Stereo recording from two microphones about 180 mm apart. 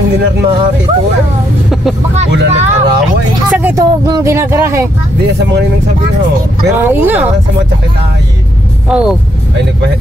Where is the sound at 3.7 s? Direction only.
20° right (ahead or behind).